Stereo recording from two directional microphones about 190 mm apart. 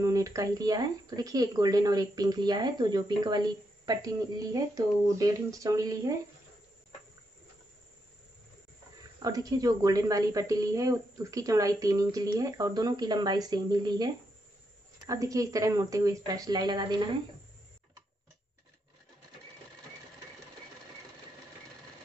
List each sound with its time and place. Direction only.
0.0 s speech: 15° right (ahead or behind)
9.2 s speech: 20° right (ahead or behind)